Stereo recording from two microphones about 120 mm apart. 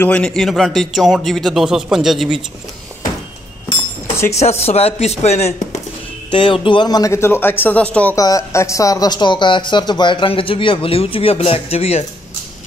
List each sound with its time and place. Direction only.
0.0 s a man's voice: 10° left (ahead or behind)
4.3 s speech: 60° left (ahead or behind)
6.3 s speech: 45° left (ahead or behind); by 8.2 s 10° left (ahead or behind)
8.2 s speech: 30° left (ahead or behind); by 12.0 s 55° left (ahead or behind)